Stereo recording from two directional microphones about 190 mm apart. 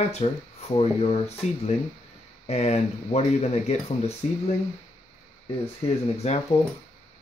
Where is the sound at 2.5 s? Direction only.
35° left (ahead or behind).